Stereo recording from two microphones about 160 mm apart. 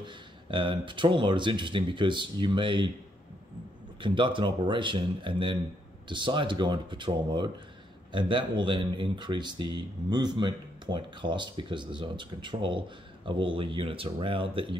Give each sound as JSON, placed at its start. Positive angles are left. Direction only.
{"t": 0.0, "sound": "speech", "side_deg": -30}
{"t": 4.0, "sound": "speech", "side_deg": -30}